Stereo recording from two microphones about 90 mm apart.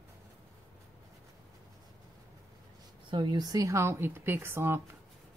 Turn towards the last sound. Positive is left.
turn(degrees=-30)  # may be behind; listen again after turning